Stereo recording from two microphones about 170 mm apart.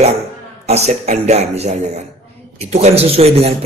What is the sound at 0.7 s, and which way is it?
Speech, 40° right (ahead or behind).